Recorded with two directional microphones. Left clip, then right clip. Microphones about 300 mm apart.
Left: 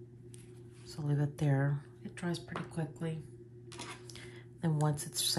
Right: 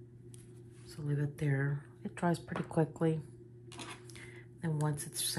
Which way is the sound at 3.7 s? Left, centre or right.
Centre.